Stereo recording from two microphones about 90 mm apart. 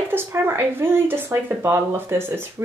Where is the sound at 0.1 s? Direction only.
25° right (ahead or behind).